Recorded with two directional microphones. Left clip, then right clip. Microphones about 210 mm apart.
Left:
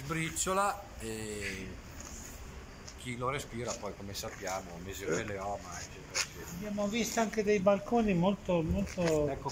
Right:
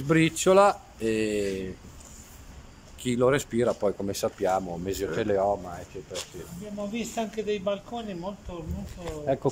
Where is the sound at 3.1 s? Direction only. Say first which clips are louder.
Right 13 dB; 50° right (ahead or behind).